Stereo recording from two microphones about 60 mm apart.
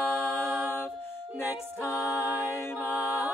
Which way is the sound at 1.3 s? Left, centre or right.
Left.